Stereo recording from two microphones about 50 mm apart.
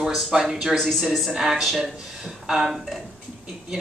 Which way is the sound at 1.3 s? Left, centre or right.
Centre.